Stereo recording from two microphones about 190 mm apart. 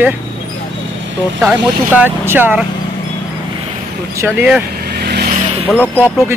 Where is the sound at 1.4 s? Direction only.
10° right (ahead or behind).